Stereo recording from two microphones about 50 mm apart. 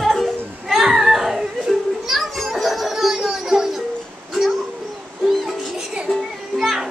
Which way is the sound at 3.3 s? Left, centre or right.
Centre.